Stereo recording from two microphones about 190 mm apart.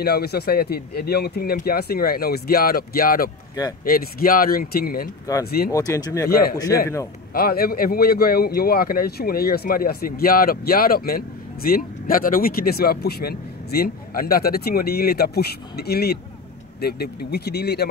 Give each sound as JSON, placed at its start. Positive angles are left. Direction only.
{"t": 0.0, "sound": "speech", "side_deg": 55}
{"t": 5.7, "sound": "speech", "side_deg": 20}
{"t": 7.3, "sound": "speech", "side_deg": 50}